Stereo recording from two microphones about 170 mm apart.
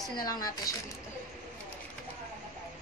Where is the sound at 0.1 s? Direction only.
20° left (ahead or behind).